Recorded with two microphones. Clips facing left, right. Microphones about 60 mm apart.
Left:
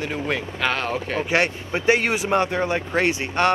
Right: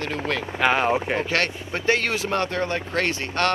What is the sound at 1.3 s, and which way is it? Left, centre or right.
Speech, centre.